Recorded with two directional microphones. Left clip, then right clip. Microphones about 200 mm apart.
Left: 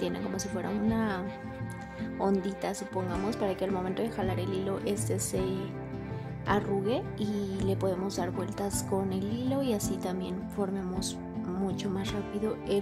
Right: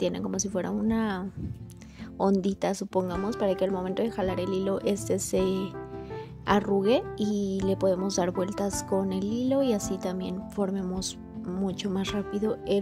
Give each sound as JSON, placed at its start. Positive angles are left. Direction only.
{"t": 0.0, "sound": "speech", "side_deg": -20}